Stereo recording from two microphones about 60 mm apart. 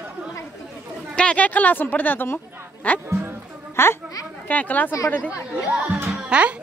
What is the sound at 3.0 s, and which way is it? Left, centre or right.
Music, right.